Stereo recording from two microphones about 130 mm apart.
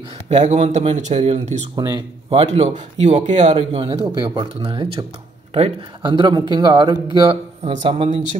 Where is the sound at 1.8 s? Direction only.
30° right (ahead or behind).